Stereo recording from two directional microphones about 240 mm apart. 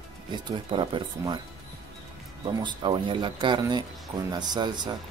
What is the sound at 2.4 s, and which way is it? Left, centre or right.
Speech, centre.